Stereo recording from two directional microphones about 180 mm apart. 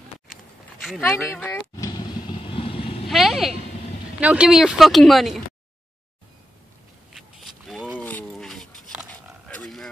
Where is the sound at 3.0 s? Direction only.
Centre (ahead or behind).